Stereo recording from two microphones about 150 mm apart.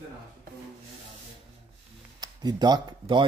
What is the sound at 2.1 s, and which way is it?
Speech, 25° right (ahead or behind).